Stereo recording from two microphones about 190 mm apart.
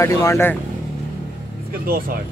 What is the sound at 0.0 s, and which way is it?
Speech, 15° left (ahead or behind).